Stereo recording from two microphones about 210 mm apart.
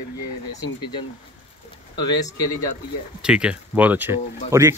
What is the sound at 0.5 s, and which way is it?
A man's voice, 20° left (ahead or behind).